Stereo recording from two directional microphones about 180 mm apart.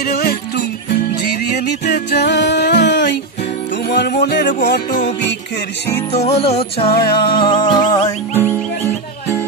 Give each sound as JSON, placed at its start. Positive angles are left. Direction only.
{"t": 0.1, "sound": "music", "side_deg": 60}
{"t": 3.9, "sound": "music", "side_deg": 60}
{"t": 4.6, "sound": "music", "side_deg": 70}
{"t": 6.1, "sound": "music", "side_deg": 35}